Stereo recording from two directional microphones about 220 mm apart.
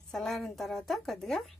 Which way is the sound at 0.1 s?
Centre (ahead or behind).